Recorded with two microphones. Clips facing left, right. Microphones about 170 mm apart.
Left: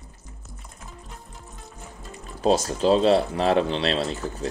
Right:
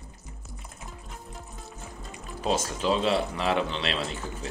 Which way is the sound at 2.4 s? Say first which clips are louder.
Left 6 dB; 35° left (ahead or behind).